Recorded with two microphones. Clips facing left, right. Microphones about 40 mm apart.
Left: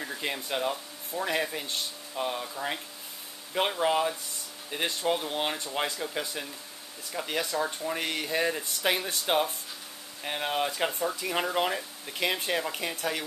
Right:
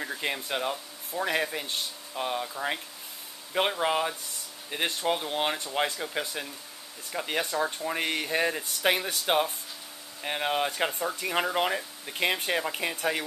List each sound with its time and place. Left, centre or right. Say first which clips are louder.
0.0 s speech: right 2 dB; centre